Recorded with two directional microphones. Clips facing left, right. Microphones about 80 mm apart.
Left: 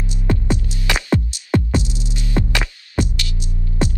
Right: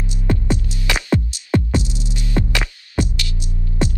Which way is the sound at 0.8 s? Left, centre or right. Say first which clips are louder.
Even; left.